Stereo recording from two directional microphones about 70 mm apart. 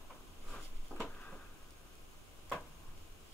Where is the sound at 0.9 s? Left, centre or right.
Centre.